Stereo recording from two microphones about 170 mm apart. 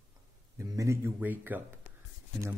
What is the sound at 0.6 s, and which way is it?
A man's voice, 15° right (ahead or behind).